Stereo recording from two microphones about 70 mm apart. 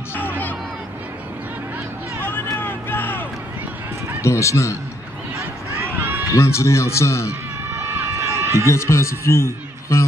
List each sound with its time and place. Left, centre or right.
2.2 s vehicle: left
4.2 s a man's voice: left
5.4 s run: right
6.3 s a man's voice: left
7.8 s run: right
8.6 s a man's voice: left